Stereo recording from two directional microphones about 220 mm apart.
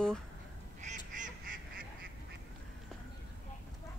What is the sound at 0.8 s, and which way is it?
Goose, 35° right (ahead or behind).